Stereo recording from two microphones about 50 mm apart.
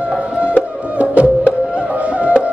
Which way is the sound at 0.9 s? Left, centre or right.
Right.